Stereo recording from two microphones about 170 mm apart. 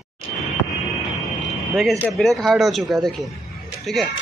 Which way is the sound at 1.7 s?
5° left (ahead or behind).